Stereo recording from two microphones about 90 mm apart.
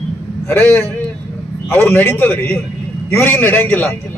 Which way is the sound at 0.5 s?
25° left (ahead or behind).